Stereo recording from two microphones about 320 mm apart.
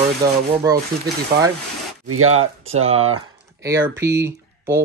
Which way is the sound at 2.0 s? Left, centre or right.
Right.